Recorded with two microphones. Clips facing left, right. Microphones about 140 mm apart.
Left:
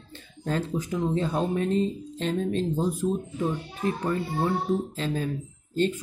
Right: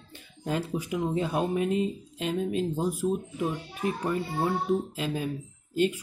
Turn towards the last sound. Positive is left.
turn(degrees=-10)  # may be behind; listen again after turning